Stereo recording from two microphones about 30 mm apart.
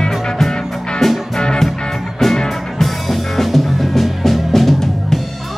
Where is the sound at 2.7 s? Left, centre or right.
Centre.